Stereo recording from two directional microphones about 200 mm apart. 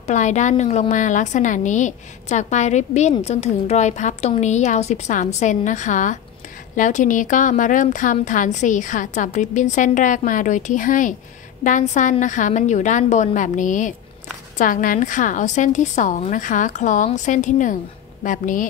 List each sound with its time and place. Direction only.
0.0 s a woman's voice: 35° left (ahead or behind)